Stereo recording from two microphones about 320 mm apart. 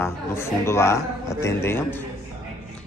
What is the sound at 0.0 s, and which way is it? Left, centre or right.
Speech, centre.